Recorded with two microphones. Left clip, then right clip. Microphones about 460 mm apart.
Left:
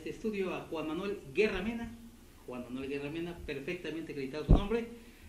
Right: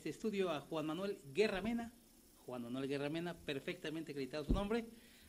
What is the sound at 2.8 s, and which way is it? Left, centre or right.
Speech, right.